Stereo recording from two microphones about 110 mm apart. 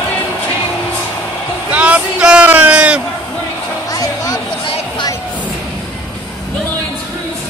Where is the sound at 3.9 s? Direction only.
35° left (ahead or behind).